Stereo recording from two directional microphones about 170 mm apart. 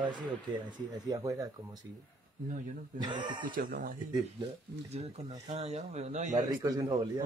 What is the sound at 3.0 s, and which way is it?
Speech, 25° right (ahead or behind).